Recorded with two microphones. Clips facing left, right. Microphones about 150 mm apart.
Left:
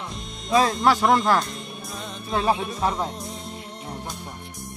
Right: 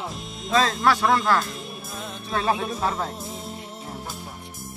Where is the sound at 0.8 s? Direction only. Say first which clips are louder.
Left 2 dB; 20° left (ahead or behind).